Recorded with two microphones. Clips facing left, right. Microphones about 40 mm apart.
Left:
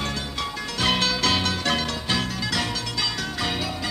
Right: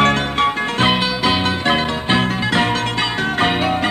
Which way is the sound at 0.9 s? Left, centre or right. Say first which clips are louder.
Right 5 dB; right.